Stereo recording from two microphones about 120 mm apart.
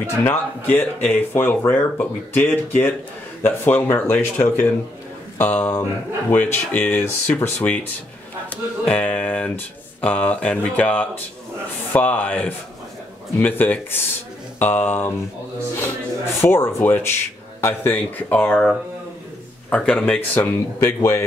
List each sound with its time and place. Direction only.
0.0 s speech: 15° left (ahead or behind)
16.3 s speech: 20° left (ahead or behind)